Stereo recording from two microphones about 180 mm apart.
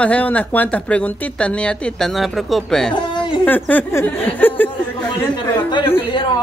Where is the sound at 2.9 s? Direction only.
25° left (ahead or behind).